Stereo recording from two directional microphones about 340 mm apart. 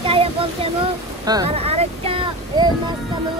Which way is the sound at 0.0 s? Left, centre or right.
Centre.